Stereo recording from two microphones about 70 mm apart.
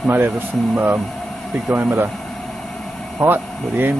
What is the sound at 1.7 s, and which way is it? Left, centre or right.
Speech, right.